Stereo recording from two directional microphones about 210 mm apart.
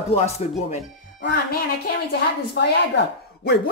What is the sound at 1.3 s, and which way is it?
Speech, 45° left (ahead or behind).